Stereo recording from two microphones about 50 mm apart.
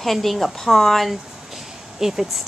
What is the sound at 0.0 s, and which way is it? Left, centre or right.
A woman's voice, centre.